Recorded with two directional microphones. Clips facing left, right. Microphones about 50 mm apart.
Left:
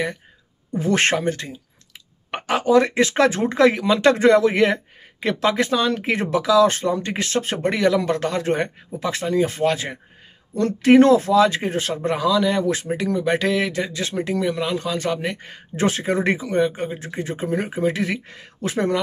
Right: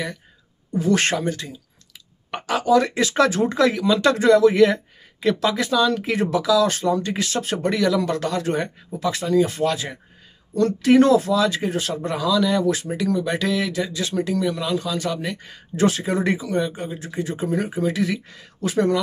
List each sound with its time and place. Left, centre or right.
0.7 s speech: left